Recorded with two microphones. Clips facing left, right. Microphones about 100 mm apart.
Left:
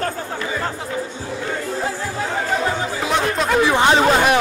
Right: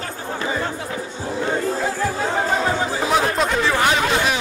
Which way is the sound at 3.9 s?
30° left (ahead or behind).